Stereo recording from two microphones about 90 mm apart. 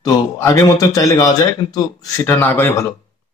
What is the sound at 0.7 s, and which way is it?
Speech, 40° left (ahead or behind).